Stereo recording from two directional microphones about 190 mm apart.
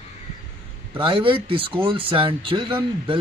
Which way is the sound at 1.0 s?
25° right (ahead or behind).